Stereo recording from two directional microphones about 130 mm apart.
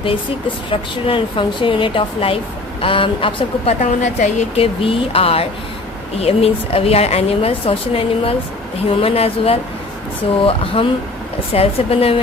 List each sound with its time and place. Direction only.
0.7 s speech: 40° left (ahead or behind)
3.8 s a woman's voice: 65° left (ahead or behind)
4.6 s speech: 45° left (ahead or behind)